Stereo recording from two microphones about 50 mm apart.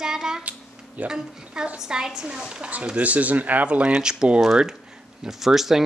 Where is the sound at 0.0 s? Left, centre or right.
Centre.